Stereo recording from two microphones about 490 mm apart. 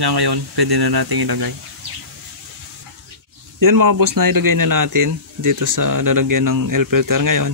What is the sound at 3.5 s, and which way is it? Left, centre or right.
Speech, right.